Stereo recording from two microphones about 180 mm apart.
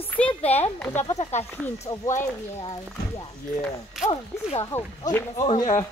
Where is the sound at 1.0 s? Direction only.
35° left (ahead or behind).